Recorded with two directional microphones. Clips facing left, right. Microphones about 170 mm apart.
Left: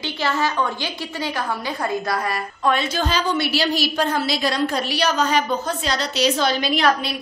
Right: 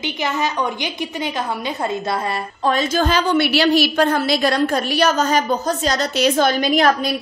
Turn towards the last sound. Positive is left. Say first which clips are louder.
# right 4 dB
turn(degrees=-45)  # may be behind; listen again after turning